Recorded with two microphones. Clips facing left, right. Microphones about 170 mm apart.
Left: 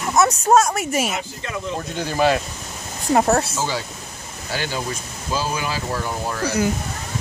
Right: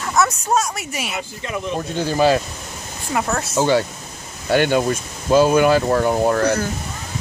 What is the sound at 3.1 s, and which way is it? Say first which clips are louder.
Speech: left 5 dB; 40° left (ahead or behind).